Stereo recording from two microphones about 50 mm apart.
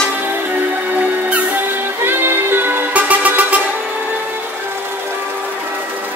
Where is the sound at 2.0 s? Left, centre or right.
Right.